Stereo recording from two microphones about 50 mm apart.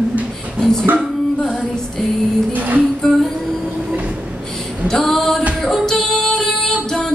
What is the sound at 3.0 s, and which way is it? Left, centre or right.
Music, centre.